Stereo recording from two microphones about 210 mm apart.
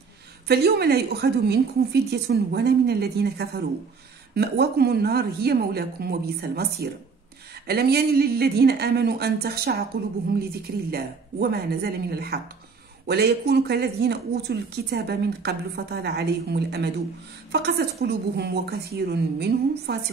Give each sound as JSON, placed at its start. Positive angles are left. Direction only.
{"t": 0.5, "sound": "a woman's voice", "side_deg": -50}
{"t": 10.9, "sound": "a woman's voice", "side_deg": -45}